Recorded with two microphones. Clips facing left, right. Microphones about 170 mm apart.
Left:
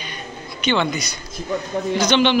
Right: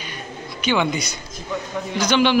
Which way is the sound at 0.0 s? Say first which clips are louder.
Even; 10° right (ahead or behind).